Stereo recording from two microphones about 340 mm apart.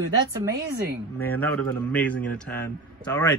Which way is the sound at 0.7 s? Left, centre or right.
Right.